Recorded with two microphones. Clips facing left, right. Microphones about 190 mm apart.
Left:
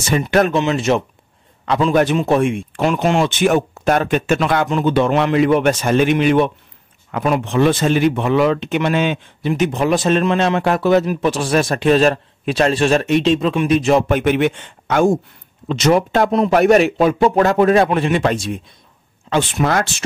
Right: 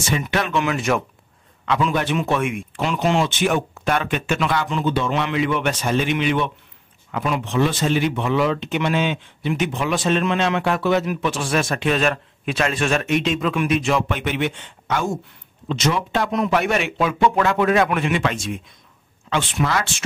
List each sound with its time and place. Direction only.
0.3 s speech: 45° left (ahead or behind)
0.6 s speech: 25° left (ahead or behind)
1.7 s speech: 35° left (ahead or behind)
2.7 s speech: 50° left (ahead or behind)
16.3 s speech: 35° left (ahead or behind)